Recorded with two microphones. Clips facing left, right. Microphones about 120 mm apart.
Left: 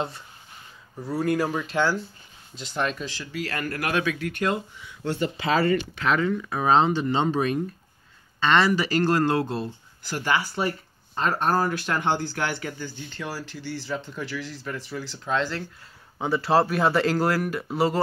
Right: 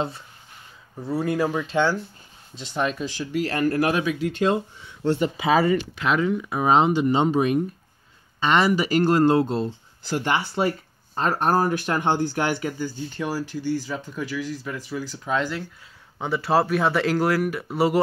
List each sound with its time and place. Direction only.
0.9 s speech: centre (ahead or behind); by 5.2 s 30° right (ahead or behind)
5.6 s speech: 10° right (ahead or behind)